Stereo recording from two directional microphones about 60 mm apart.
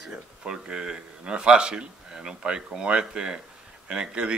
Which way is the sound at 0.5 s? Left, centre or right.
Centre.